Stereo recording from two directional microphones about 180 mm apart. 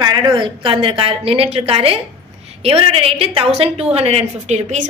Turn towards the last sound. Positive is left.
turn(degrees=-40)  # may be behind; listen again after turning